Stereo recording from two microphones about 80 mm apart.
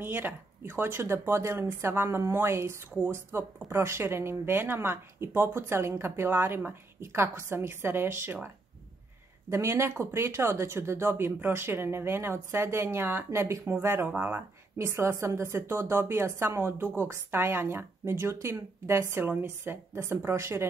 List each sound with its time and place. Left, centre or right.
0.0 s a woman's voice: right
9.5 s a woman's voice: right